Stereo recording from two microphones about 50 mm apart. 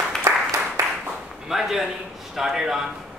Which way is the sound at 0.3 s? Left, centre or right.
Right.